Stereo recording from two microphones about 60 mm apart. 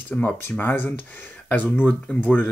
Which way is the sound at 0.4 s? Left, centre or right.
Left.